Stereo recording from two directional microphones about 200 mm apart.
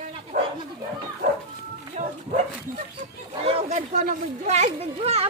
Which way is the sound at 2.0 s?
40° right (ahead or behind).